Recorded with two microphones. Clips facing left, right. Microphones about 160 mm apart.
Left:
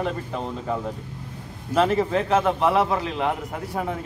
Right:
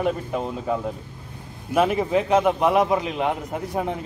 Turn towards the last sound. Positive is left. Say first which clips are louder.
# right 2 dB
turn(degrees=-20)  # may be behind; listen again after turning